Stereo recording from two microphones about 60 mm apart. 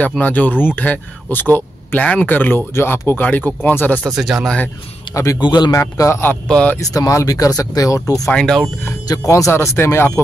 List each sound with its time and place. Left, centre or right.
0.2 s speech: left
2.7 s speech: left
3.2 s speech: left
4.1 s speech: centre
5.1 s a man's voice: left
6.4 s speech: centre
6.8 s speech: left
8.3 s speech: centre
9.1 s speech: left
9.5 s speech: left